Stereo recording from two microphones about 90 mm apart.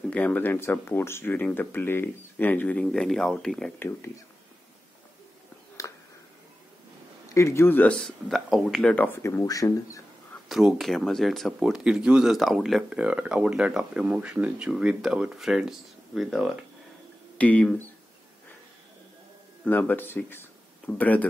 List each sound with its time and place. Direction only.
0.1 s speech: 15° left (ahead or behind)
5.8 s a sound: 35° left (ahead or behind)
7.2 s speech: 35° left (ahead or behind)
7.9 s speech: centre (ahead or behind)
8.9 s speech: 25° left (ahead or behind)
10.5 s speech: centre (ahead or behind)
13.0 s speech: 15° right (ahead or behind)
17.4 s speech: 15° left (ahead or behind)
19.6 s speech: 20° left (ahead or behind)